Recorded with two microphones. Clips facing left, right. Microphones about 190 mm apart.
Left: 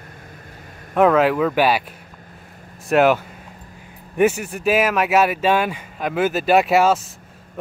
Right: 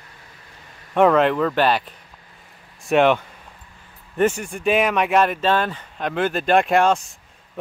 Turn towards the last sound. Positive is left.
turn(degrees=5)  # may be behind; listen again after turning